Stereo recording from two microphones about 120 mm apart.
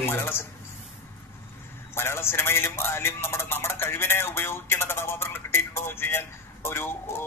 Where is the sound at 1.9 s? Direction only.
20° left (ahead or behind).